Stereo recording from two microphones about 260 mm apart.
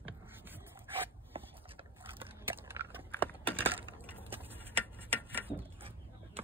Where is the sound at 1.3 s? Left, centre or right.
Right.